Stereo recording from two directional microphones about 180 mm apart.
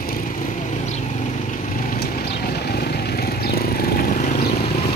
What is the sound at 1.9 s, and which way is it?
Vehicle, 60° left (ahead or behind).